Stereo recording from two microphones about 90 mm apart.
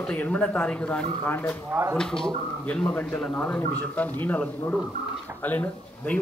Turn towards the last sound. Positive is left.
turn(degrees=15)  # may be behind; listen again after turning